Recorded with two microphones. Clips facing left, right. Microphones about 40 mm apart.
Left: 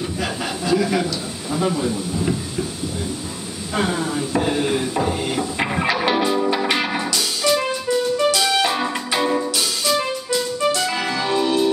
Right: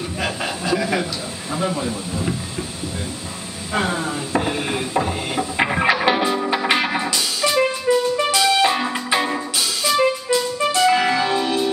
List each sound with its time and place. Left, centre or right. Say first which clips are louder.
0.7 s speech: left 2 dB; centre
3.7 s speech: even; centre
4.4 s music: left 3 dB; centre
7.8 s music: right 1 dB; right
8.4 s music: right 2 dB; centre